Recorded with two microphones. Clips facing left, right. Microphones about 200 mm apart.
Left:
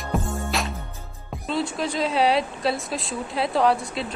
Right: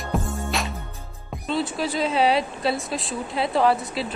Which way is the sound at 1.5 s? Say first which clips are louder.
Right 1 dB; centre (ahead or behind).